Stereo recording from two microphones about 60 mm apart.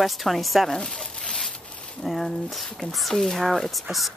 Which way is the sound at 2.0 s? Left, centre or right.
Centre.